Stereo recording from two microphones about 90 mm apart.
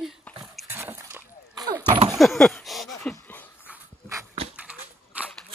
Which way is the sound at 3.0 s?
15° left (ahead or behind).